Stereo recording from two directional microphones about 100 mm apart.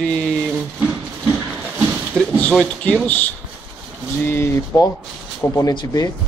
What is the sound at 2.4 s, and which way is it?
Speech, 10° left (ahead or behind).